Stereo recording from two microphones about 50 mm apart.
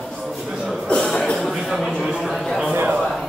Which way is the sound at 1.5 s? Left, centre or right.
Centre.